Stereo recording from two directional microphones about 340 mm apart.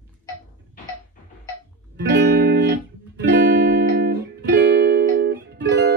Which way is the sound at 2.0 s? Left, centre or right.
Right.